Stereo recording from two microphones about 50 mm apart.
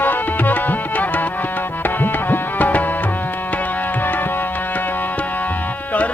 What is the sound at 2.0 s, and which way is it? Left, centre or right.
Tabla, left.